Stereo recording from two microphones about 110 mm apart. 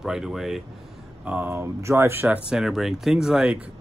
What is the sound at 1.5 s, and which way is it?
Speech, 25° right (ahead or behind).